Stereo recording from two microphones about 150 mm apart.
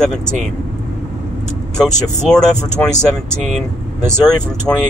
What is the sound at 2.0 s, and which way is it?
Speech, 5° left (ahead or behind).